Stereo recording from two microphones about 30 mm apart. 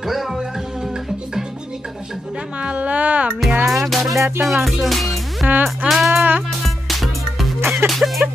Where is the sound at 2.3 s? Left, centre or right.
Right.